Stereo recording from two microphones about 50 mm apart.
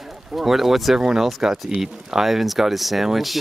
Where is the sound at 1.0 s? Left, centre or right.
Centre.